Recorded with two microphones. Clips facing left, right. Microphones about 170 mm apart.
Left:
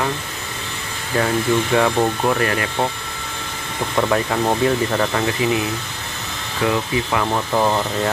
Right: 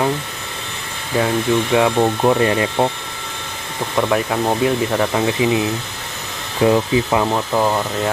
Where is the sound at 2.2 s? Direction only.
20° right (ahead or behind).